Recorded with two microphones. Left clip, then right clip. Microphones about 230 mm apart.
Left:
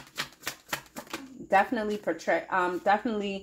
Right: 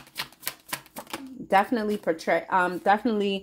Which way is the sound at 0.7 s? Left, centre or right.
Centre.